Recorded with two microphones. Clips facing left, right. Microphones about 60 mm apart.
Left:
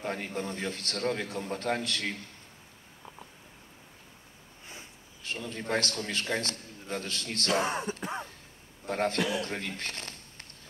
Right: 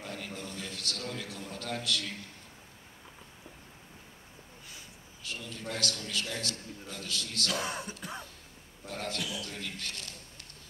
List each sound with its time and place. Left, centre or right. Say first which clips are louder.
0.0 s a man's voice: left 7 dB; left
4.6 s a man's voice: left 6 dB; left